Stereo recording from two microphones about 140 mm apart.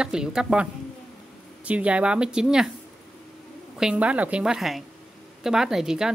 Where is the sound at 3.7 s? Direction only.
5° right (ahead or behind).